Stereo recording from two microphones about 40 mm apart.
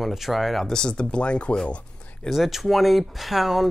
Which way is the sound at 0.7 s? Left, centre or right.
Left.